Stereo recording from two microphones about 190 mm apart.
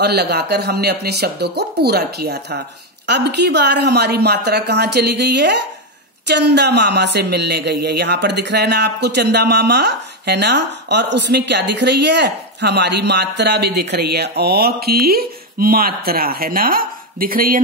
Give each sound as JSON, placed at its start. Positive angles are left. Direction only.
{"t": 0.0, "sound": "speech", "side_deg": -60}